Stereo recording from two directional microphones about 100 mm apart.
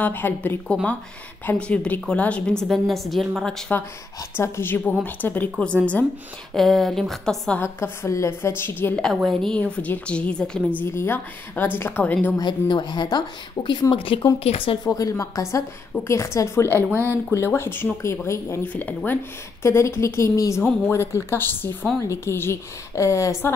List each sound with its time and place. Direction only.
0.0 s a woman's voice: 20° left (ahead or behind)
4.4 s a woman's voice: 20° left (ahead or behind)
6.5 s a woman's voice: centre (ahead or behind)
7.6 s a woman's voice: 25° left (ahead or behind)
9.1 s a woman's voice: centre (ahead or behind)
9.6 s a woman's voice: 15° left (ahead or behind)
10.8 s a woman's voice: 25° left (ahead or behind)
12.4 s a woman's voice: 50° left (ahead or behind)
14.4 s speech: 75° left (ahead or behind)
14.9 s a woman's voice: 35° left (ahead or behind)
16.9 s speech: 25° right (ahead or behind)
17.3 s a woman's voice: 25° left (ahead or behind)
18.6 s a woman's voice: 20° left (ahead or behind)